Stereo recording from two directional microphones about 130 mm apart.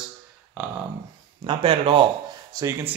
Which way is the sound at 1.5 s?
45° right (ahead or behind).